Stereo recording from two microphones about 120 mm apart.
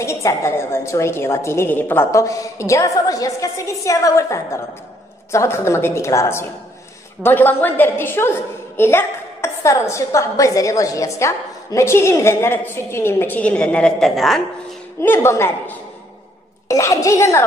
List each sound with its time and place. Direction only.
0.0 s a woman's voice: 25° left (ahead or behind); by 14.4 s centre (ahead or behind)
15.0 s a woman's voice: 20° left (ahead or behind)